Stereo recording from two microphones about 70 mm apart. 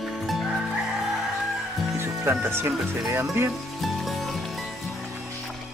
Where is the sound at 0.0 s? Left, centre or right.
Centre.